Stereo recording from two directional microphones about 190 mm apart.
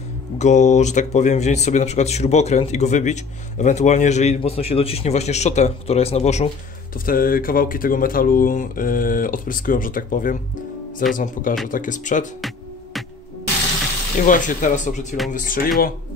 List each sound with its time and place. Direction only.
0.4 s speech: 40° left (ahead or behind)
7.1 s speech: 50° left (ahead or behind)
12.4 s music: centre (ahead or behind)
14.2 s speech: 45° left (ahead or behind)